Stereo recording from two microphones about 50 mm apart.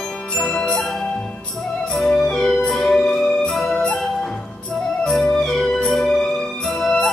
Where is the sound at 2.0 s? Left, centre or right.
Centre.